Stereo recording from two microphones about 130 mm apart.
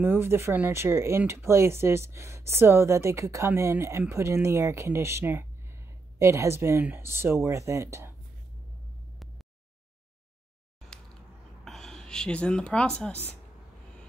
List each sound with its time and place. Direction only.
0.0 s speech: 15° right (ahead or behind)
11.6 s speech: centre (ahead or behind)